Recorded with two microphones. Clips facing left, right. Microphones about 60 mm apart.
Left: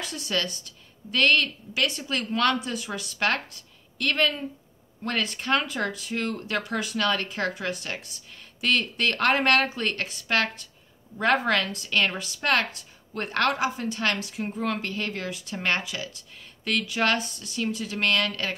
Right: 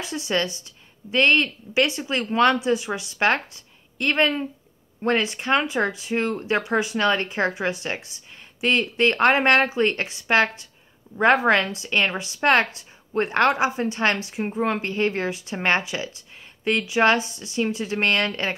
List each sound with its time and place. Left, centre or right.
0.3 s speech: right